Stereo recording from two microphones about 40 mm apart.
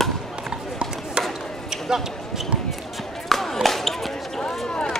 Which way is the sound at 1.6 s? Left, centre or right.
Centre.